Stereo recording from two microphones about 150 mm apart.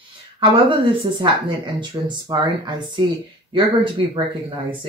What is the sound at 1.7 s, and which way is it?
Speech, 30° right (ahead or behind).